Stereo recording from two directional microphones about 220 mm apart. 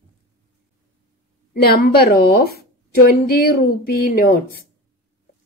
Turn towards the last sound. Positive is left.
turn(degrees=40)  # may be behind; listen again after turning